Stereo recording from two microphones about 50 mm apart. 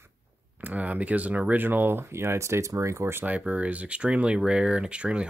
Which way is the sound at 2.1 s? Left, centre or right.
Right.